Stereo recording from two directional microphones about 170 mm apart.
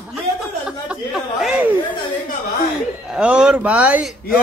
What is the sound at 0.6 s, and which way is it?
Chatter, 5° right (ahead or behind).